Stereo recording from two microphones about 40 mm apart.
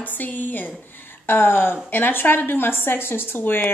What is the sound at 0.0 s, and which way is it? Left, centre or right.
Speech, left.